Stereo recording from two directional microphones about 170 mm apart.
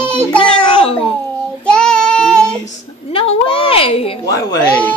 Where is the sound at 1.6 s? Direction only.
5° left (ahead or behind).